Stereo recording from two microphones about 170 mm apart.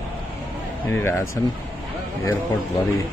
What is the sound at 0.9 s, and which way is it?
Speech, 15° left (ahead or behind).